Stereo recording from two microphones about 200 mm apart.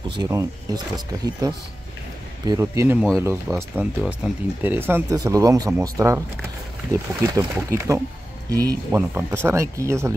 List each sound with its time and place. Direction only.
0.1 s speech: 20° right (ahead or behind)